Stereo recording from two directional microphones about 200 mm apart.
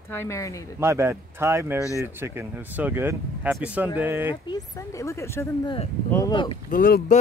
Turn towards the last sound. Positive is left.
turn(degrees=45)  # may be behind; listen again after turning